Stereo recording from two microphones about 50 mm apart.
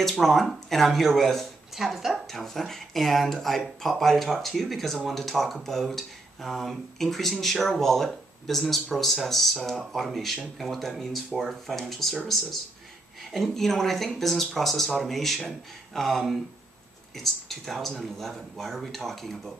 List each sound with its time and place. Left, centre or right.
0.0 s speech: centre
2.2 s speech: centre
13.2 s speech: centre